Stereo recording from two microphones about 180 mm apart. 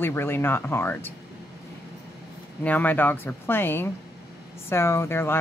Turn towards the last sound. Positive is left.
turn(degrees=15)  # may be behind; listen again after turning